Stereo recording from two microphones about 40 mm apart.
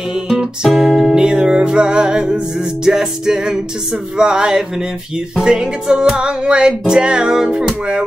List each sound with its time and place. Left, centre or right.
0.7 s music: centre
1.1 s music: centre